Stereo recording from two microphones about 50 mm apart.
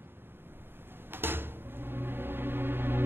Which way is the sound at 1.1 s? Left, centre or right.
Right.